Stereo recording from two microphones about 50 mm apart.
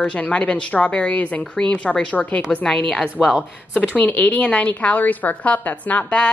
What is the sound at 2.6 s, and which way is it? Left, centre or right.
Speech, centre.